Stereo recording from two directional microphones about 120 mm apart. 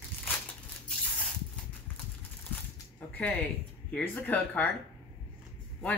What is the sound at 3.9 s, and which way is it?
Speech, 15° left (ahead or behind).